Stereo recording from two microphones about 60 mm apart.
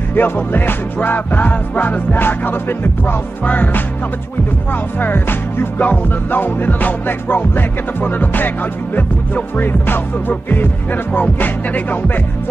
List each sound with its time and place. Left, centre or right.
0.1 s music: left
4.9 s music: left